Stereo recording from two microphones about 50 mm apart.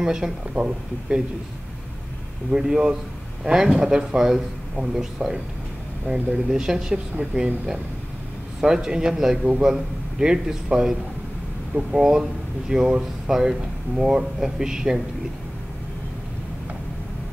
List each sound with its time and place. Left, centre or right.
0.0 s speech: centre
2.5 s speech: centre
6.3 s speech: centre
8.5 s speech: centre